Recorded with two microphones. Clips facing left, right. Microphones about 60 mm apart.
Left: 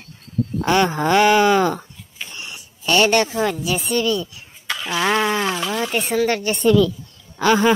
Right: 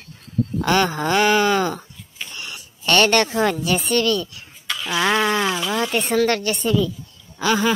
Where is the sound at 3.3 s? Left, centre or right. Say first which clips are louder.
Right 1 dB; centre.